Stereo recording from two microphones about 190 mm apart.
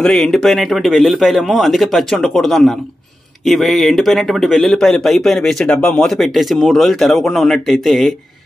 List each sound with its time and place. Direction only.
0.0 s speech: centre (ahead or behind)